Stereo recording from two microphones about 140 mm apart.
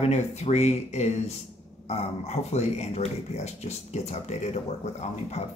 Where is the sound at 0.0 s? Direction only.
50° left (ahead or behind).